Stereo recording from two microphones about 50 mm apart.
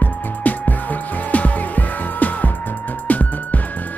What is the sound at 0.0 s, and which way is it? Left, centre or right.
Music, left.